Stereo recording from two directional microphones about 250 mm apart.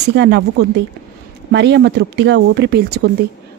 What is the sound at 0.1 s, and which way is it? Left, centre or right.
Speech, right.